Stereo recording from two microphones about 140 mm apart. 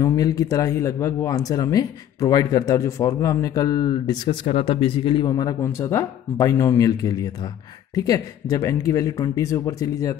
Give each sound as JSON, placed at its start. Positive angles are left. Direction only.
{"t": 0.0, "sound": "speech", "side_deg": 25}
{"t": 4.5, "sound": "speech", "side_deg": 45}